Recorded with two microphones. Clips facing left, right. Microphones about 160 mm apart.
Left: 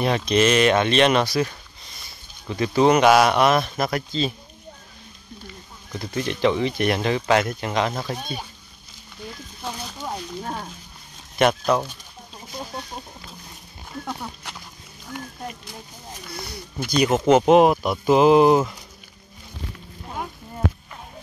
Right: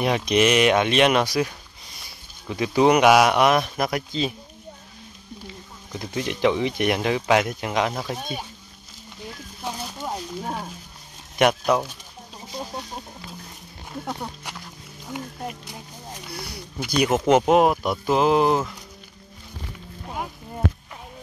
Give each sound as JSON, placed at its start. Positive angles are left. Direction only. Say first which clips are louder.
{"t": 0.0, "sound": "speech", "louder": "even", "side_deg": -15}
{"t": 5.9, "sound": "speech", "louder": "left 1 dB", "side_deg": -10}
{"t": 9.6, "sound": "a sound", "louder": "right 1 dB", "side_deg": -10}
{"t": 11.3, "sound": "speech", "louder": "even", "side_deg": -10}
{"t": 12.5, "sound": "chicken", "louder": "right 1 dB", "side_deg": -5}
{"t": 15.0, "sound": "wild animals", "louder": "right 2 dB", "side_deg": -10}
{"t": 16.8, "sound": "speech", "louder": "left 1 dB", "side_deg": -10}